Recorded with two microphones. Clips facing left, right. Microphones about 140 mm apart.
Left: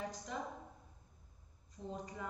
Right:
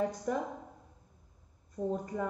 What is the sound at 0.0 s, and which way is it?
Speech, 60° right (ahead or behind).